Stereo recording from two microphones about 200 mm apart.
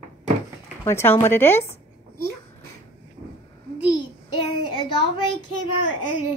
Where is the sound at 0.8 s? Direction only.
10° left (ahead or behind).